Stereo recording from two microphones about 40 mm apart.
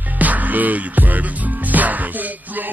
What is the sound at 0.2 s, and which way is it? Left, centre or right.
Music, right.